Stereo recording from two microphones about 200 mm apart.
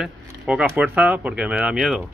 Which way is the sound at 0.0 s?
5° right (ahead or behind).